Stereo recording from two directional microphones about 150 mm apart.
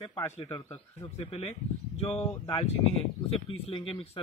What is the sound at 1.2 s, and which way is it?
Speech, 45° left (ahead or behind).